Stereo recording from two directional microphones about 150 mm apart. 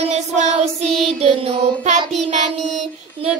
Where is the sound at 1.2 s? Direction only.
40° right (ahead or behind).